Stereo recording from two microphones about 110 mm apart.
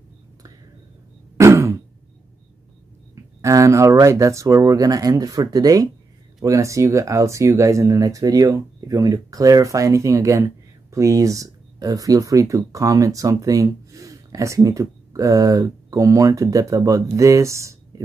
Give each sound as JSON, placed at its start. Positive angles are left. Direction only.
{"t": 1.4, "sound": "throat clearing", "side_deg": -25}
{"t": 3.4, "sound": "speech", "side_deg": -30}